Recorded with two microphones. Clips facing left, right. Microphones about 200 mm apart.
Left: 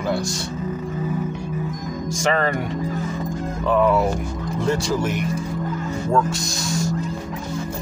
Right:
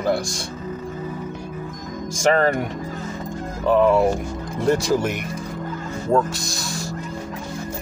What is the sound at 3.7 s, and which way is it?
Speech, 25° right (ahead or behind).